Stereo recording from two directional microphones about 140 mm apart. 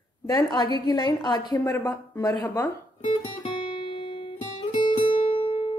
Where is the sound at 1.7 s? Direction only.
20° left (ahead or behind).